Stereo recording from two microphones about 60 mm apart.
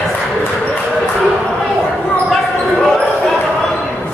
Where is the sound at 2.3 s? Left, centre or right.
Centre.